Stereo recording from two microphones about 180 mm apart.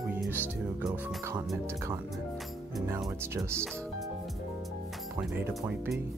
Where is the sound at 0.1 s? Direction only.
10° right (ahead or behind).